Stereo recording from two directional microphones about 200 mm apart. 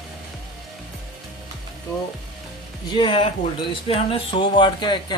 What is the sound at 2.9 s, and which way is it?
Speech, 25° left (ahead or behind).